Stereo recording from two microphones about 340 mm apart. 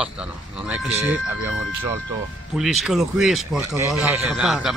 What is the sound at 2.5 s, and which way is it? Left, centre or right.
Speech, centre.